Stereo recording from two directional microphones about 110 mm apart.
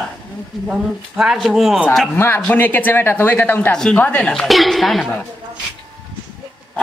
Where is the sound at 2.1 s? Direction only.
20° left (ahead or behind); by 5.3 s centre (ahead or behind).